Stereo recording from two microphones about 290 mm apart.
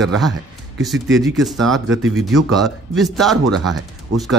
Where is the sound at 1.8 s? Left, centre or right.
Right.